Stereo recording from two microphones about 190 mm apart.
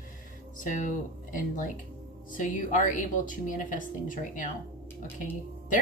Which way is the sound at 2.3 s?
45° left (ahead or behind).